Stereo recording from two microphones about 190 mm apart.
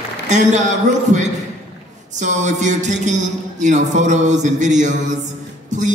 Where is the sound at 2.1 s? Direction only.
40° right (ahead or behind).